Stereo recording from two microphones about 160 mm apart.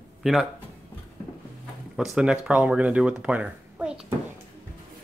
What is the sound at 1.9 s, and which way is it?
Speech, centre (ahead or behind).